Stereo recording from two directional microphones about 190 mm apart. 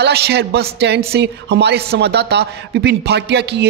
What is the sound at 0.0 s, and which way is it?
Speech, 60° right (ahead or behind).